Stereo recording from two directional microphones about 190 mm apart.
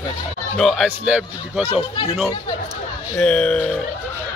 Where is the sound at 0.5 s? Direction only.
Centre (ahead or behind).